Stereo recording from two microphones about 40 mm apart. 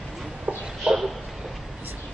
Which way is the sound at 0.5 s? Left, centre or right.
Right.